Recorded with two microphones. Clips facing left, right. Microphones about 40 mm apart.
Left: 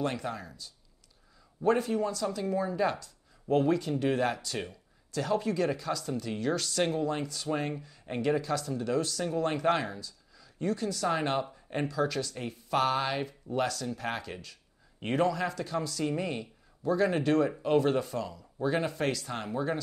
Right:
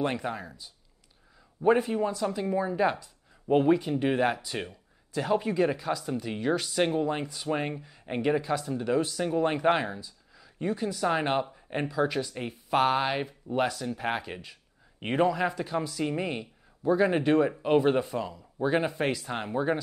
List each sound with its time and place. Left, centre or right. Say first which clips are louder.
0.0 s speech: right 3 dB; right